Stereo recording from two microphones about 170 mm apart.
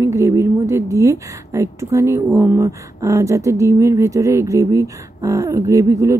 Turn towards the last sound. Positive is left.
turn(degrees=-20)  # may be behind; listen again after turning